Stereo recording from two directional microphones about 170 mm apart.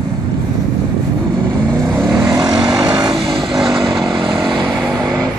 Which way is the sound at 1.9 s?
20° right (ahead or behind).